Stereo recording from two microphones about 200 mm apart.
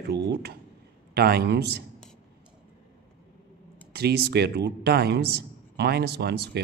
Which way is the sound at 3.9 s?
55° right (ahead or behind).